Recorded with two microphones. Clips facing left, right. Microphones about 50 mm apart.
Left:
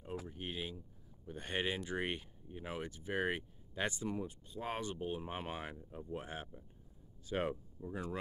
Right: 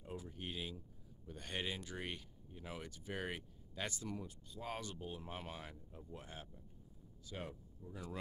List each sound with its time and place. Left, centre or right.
0.3 s speech: centre
2.9 s speech: centre; by 6.6 s left
7.2 s speech: left